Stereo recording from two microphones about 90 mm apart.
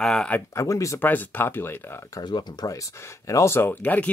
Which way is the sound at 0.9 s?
20° left (ahead or behind).